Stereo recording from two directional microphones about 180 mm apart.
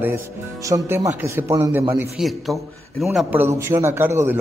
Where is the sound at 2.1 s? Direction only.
Centre (ahead or behind).